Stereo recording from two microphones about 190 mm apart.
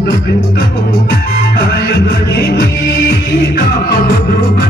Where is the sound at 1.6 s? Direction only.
60° left (ahead or behind).